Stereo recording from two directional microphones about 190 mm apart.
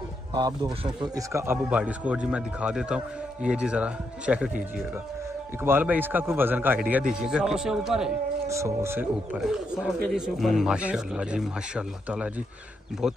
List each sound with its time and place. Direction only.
0.3 s speech: 20° right (ahead or behind); by 4.5 s 5° right (ahead or behind)
5.6 s a man's voice: 10° right (ahead or behind)
8.5 s a man's voice: 15° right (ahead or behind)